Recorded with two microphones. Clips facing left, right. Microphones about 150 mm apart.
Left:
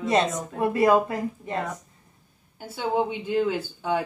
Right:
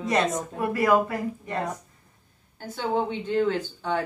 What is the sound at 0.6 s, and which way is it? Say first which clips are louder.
Speech: left 2 dB; 25° left (ahead or behind).